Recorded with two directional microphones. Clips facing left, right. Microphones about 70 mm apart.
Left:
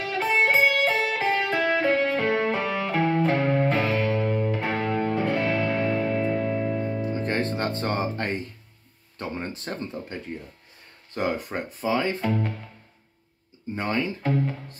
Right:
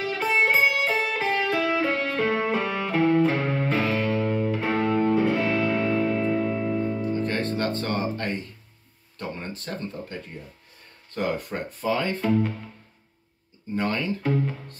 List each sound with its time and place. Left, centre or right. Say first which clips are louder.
0.0 s music: even; centre; by 8.4 s left
9.4 s speech: left 1 dB; left
11.1 s speech: even; centre
13.7 s speech: even; centre
14.2 s speech: right 2 dB; centre